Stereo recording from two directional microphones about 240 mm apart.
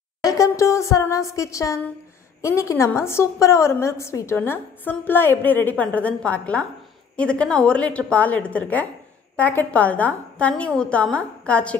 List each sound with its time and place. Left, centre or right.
0.2 s a woman's voice: centre